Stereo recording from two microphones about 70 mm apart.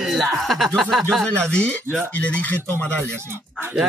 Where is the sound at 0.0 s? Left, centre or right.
Centre.